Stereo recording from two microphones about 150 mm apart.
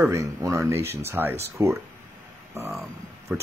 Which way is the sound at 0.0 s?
20° right (ahead or behind).